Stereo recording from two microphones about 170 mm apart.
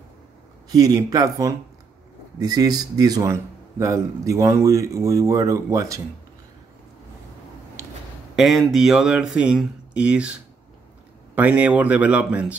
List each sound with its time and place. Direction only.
0.7 s speech: 20° right (ahead or behind)
7.8 s a sound: 15° right (ahead or behind)
8.4 s speech: centre (ahead or behind)